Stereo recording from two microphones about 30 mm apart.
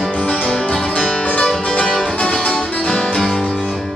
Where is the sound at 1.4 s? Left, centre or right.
Left.